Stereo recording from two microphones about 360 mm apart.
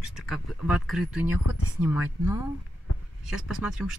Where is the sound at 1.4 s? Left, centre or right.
Left.